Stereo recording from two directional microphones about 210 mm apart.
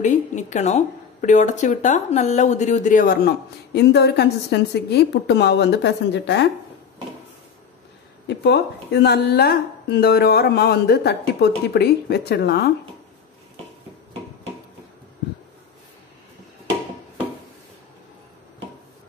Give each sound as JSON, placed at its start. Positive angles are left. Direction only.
{"t": 0.0, "sound": "speech", "side_deg": 35}
{"t": 8.3, "sound": "a woman's voice", "side_deg": 55}